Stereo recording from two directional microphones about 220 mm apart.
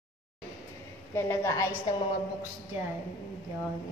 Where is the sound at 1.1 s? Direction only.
10° left (ahead or behind).